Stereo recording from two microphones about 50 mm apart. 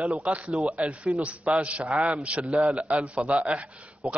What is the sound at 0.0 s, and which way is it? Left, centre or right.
A man's voice, right.